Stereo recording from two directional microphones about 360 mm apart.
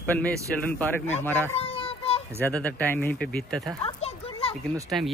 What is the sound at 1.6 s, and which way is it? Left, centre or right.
Child singing, centre.